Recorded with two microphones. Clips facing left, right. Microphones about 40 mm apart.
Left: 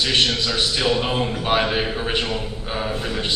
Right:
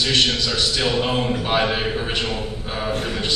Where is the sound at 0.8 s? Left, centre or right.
Centre.